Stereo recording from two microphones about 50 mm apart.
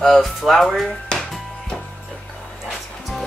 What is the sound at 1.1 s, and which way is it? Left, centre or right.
Music, centre.